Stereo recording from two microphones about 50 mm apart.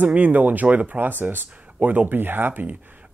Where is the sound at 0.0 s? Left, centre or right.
Right.